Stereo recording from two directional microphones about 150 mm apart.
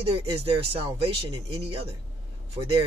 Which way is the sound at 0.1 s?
40° right (ahead or behind).